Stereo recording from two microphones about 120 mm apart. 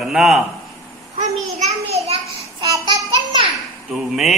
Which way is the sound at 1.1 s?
70° right (ahead or behind).